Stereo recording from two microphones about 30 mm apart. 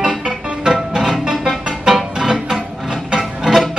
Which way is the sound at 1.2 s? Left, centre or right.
Centre.